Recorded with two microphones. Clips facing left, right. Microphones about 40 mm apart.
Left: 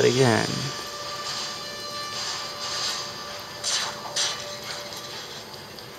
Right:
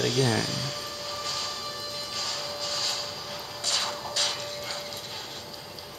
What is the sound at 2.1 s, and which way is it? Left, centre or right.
Printer, centre.